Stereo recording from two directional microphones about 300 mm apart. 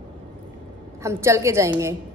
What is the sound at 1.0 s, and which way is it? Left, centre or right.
Speech, centre.